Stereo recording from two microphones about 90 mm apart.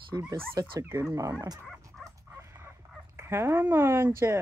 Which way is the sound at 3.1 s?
30° right (ahead or behind).